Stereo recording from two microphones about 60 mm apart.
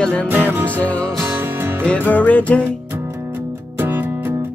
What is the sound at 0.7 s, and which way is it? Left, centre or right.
Music, left.